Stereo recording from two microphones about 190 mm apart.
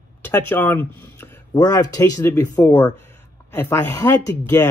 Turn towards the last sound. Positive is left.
turn(degrees=10)  # may be behind; listen again after turning